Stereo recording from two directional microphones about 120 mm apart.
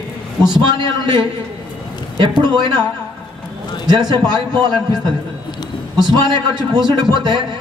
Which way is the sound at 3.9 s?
35° right (ahead or behind).